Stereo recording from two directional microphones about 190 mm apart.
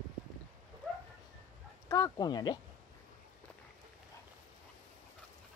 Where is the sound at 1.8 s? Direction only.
20° left (ahead or behind).